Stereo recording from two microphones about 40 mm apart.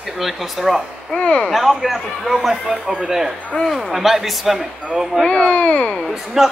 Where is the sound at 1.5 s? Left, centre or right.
Centre.